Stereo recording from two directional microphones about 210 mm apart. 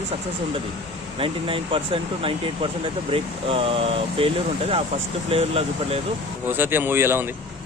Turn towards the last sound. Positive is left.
turn(degrees=-10)  # may be behind; listen again after turning